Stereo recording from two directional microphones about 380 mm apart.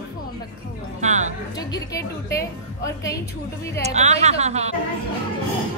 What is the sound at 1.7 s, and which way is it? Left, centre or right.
A woman's voice, centre.